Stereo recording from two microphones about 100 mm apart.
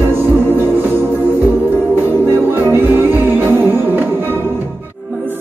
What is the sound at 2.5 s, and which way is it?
Music, 25° right (ahead or behind).